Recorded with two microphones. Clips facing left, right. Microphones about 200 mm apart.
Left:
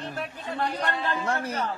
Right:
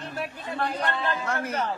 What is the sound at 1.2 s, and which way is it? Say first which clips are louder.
Speech: left 1 dB; 30° left (ahead or behind).